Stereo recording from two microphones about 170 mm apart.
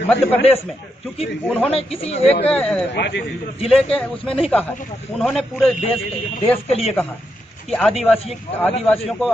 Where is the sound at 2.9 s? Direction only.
90° left.